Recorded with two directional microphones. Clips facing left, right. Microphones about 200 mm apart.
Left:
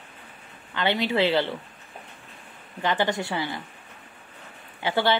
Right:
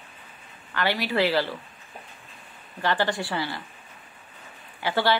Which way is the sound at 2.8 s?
20° left (ahead or behind).